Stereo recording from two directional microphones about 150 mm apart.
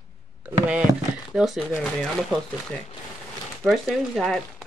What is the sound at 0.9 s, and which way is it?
Speech, 20° right (ahead or behind).